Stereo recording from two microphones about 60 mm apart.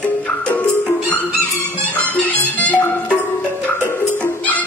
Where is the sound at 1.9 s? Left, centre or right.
Left.